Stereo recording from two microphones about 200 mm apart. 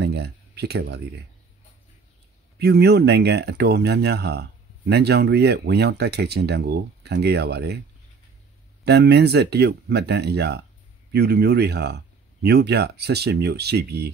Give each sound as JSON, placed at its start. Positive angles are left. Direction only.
{"t": 0.0, "sound": "a sound", "side_deg": -55}
{"t": 2.6, "sound": "speech", "side_deg": -55}
{"t": 8.8, "sound": "speech", "side_deg": -55}